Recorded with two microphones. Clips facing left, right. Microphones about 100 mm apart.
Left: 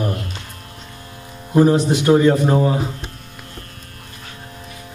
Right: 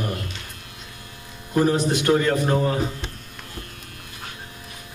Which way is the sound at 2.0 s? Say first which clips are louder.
Left 8 dB; 10° left (ahead or behind).